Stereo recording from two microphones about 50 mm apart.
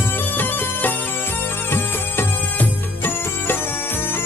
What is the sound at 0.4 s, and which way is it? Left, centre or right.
Music, left.